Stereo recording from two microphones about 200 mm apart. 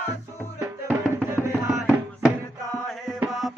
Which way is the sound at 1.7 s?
5° right (ahead or behind).